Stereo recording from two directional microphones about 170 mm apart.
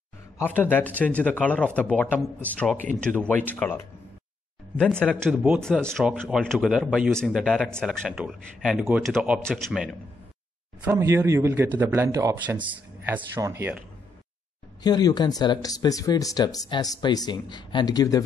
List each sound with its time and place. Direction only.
0.4 s a man's voice: 10° left (ahead or behind)
5.3 s speech: 10° right (ahead or behind)
5.6 s speech: 5° left (ahead or behind)
10.8 s speech: 15° right (ahead or behind)
14.8 s speech: 25° left (ahead or behind)